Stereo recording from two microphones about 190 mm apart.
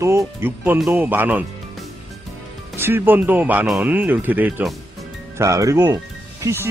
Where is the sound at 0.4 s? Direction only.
10° right (ahead or behind).